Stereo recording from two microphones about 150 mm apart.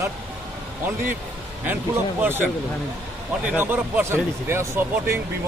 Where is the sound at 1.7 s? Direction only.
15° right (ahead or behind).